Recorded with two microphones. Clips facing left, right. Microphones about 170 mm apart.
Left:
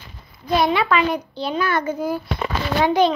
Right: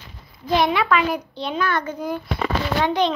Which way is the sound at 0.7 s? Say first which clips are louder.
Left 1 dB; centre (ahead or behind).